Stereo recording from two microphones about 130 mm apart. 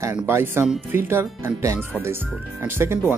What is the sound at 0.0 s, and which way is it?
Speech, 20° right (ahead or behind).